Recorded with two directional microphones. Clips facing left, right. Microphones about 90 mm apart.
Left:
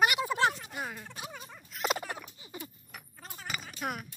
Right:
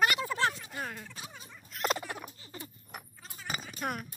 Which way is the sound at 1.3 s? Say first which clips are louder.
Left 4 dB; 40° left (ahead or behind).